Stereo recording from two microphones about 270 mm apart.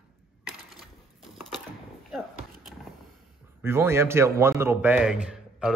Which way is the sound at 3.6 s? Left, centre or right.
Centre.